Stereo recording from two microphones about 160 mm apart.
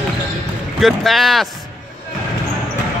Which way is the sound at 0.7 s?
Centre (ahead or behind).